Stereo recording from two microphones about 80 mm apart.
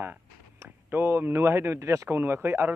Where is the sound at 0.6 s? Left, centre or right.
Right.